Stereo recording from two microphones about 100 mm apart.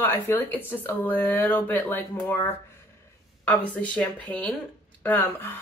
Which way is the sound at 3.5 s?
15° left (ahead or behind).